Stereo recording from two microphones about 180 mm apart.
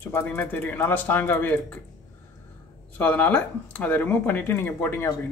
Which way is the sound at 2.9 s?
10° left (ahead or behind).